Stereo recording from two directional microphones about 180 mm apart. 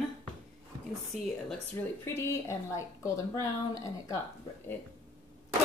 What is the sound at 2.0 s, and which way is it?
A woman's voice, 15° left (ahead or behind).